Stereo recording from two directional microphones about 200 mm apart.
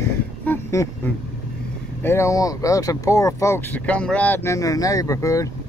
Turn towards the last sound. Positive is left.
turn(degrees=15)  # may be behind; listen again after turning